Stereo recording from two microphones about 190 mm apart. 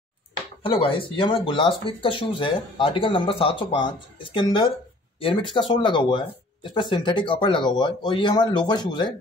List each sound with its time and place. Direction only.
0.6 s speech: 30° left (ahead or behind)